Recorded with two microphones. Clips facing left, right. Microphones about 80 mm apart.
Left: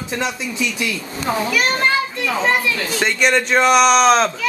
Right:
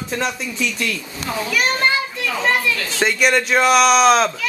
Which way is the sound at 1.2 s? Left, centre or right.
Left.